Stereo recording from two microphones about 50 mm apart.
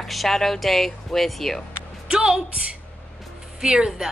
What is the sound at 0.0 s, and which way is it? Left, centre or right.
Speech, centre.